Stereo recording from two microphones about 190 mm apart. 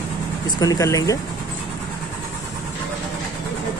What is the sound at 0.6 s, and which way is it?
Speech, 20° left (ahead or behind).